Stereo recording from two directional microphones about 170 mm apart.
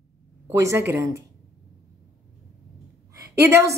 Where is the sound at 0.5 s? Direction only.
15° right (ahead or behind).